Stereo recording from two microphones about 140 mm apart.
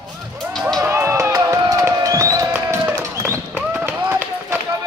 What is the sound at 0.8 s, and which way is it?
Music, 20° right (ahead or behind).